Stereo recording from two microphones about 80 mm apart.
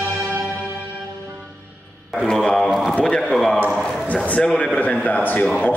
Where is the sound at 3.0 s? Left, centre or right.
Centre.